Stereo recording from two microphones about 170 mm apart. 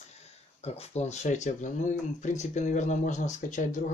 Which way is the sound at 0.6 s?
40° left (ahead or behind).